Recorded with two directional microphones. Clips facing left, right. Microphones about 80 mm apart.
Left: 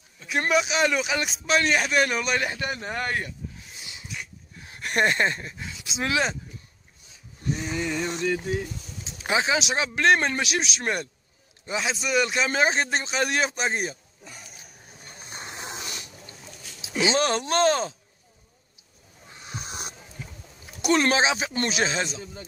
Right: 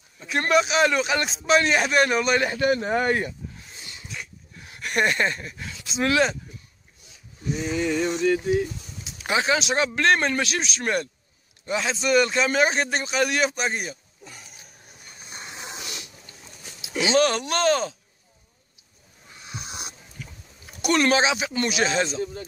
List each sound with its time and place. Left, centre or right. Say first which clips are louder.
0.3 s a man's voice: right 3 dB; centre
3.7 s dog: right 2 dB; centre
4.6 s speech: even; left
5.6 s a man's voice: right 4 dB; centre
7.4 s a man's voice: right 3 dB; centre
9.0 s a sound: right 1 dB; left
9.9 s a man's voice: left 2 dB; centre
12.7 s speech: right 1 dB; left
15.0 s a sound: left 1 dB; left
17.1 s speech: right 4 dB; left
20.8 s speech: right 1 dB; left
21.9 s a man's voice: right 5 dB; centre